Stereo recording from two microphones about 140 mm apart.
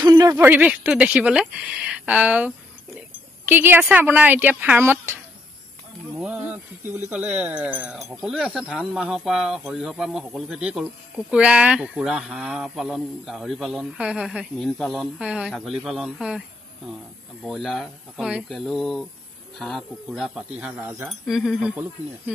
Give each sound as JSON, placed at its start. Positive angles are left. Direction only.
{"t": 0.0, "sound": "a sound", "side_deg": -30}
{"t": 0.4, "sound": "speech", "side_deg": -10}
{"t": 6.1, "sound": "speech", "side_deg": -10}
{"t": 21.1, "sound": "speech", "side_deg": 0}